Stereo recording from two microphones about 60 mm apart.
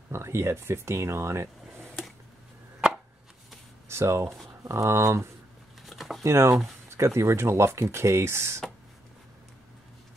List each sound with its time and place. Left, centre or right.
0.1 s speech: right
3.9 s speech: right
5.9 s a sound: centre
6.2 s speech: right